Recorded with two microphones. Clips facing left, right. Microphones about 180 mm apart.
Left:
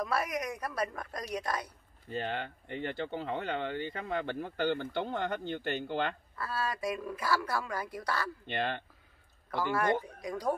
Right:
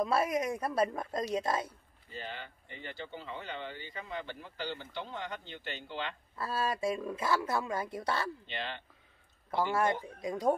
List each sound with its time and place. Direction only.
0.0 s speech: 25° right (ahead or behind)
2.0 s speech: 55° left (ahead or behind)
6.3 s speech: 25° right (ahead or behind)
8.5 s speech: 55° left (ahead or behind)
9.5 s speech: 25° right (ahead or behind)